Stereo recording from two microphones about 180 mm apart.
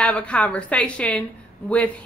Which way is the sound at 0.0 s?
5° left (ahead or behind).